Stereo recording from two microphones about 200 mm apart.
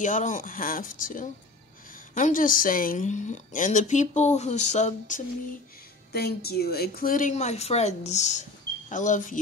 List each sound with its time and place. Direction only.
0.0 s speech: 40° left (ahead or behind)
6.1 s speech: 50° left (ahead or behind)